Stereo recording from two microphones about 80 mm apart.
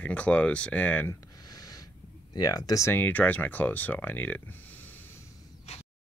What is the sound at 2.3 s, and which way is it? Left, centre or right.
Speech, left.